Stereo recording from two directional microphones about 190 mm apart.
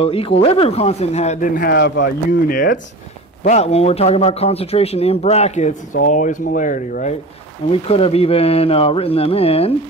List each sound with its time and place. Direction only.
0.0 s speech: 30° left (ahead or behind); by 2.8 s 45° left (ahead or behind)
3.4 s speech: 35° left (ahead or behind)
7.7 s speech: 30° left (ahead or behind)